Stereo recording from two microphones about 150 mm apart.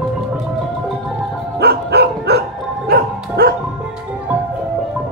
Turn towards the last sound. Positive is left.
turn(degrees=-90)